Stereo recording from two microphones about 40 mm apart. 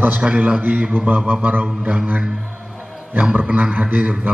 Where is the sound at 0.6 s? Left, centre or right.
Right.